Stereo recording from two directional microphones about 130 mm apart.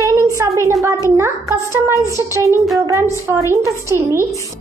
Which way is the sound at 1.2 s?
20° right (ahead or behind).